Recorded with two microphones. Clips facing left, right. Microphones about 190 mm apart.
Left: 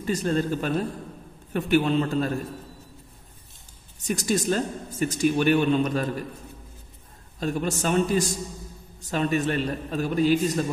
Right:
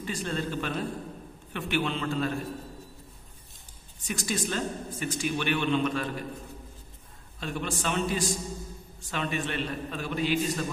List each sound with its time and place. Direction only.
0.0 s a woman's voice: 40° left (ahead or behind)
4.0 s a woman's voice: 40° left (ahead or behind)
7.3 s a man's voice: 40° left (ahead or behind)